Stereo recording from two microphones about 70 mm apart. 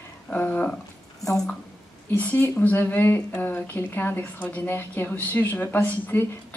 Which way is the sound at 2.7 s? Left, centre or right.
Left.